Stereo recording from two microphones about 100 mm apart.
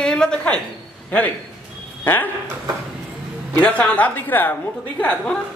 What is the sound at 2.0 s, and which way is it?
Speech, 20° left (ahead or behind).